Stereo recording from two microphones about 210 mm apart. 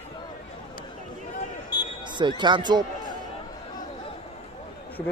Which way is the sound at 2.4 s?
20° right (ahead or behind).